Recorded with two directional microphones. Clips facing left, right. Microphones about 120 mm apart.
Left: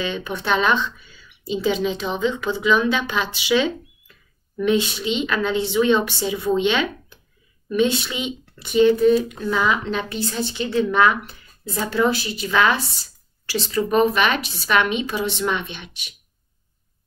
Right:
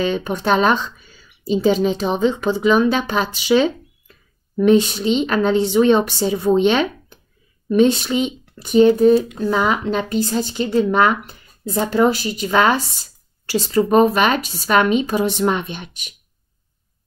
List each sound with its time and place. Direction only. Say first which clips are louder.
0.0 s a woman's voice: right 6 dB; 45° right (ahead or behind)